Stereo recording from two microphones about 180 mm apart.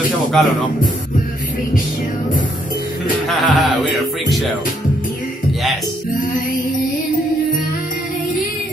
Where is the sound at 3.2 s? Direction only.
Centre (ahead or behind).